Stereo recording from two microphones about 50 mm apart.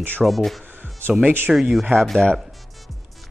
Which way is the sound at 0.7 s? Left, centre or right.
Right.